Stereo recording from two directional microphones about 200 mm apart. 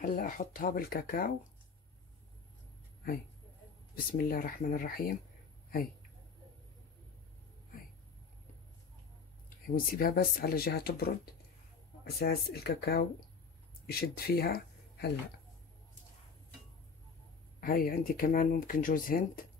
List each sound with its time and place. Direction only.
0.0 s speech: 45° left (ahead or behind)
4.2 s speech: 45° left (ahead or behind)
9.7 s speech: 45° left (ahead or behind)
17.6 s speech: 45° left (ahead or behind)